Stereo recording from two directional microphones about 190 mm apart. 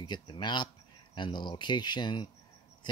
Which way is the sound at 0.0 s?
25° left (ahead or behind).